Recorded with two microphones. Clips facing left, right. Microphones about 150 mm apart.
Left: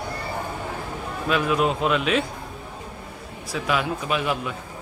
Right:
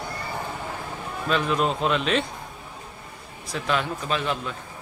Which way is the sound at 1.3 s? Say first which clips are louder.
Left 2 dB; 5° left (ahead or behind).